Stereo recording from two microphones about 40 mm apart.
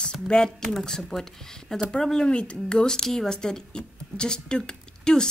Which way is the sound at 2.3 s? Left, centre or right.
Left.